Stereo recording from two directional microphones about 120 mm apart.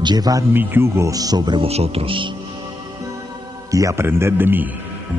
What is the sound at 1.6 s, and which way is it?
Speech, 60° right (ahead or behind).